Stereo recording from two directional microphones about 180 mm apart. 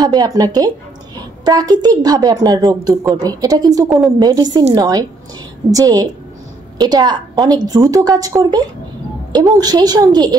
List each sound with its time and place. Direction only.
0.0 s a woman's voice: 20° right (ahead or behind)